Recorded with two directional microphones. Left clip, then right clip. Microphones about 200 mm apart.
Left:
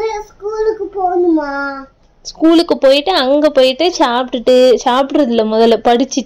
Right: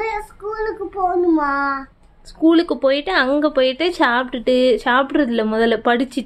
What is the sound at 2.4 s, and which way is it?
A woman's voice, 15° left (ahead or behind).